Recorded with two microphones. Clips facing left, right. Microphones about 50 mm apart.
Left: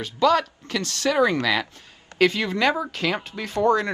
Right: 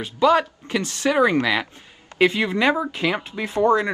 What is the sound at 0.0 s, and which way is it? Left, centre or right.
Speech, right.